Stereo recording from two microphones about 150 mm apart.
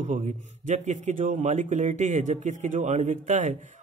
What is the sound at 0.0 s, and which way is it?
Speech, 50° right (ahead or behind).